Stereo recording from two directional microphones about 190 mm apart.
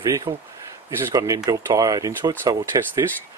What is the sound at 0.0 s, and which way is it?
Speech, 15° right (ahead or behind).